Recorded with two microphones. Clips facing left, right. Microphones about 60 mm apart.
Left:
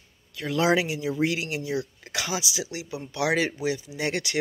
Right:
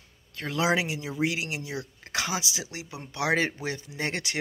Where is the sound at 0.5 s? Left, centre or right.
Right.